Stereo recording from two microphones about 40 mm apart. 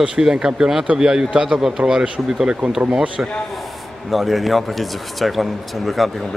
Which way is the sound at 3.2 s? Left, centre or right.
Right.